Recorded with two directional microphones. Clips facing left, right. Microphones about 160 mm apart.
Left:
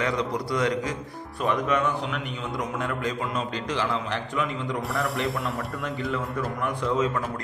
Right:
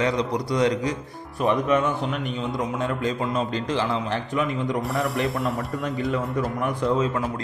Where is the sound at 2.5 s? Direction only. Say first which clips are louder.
Right 1 dB; 25° right (ahead or behind).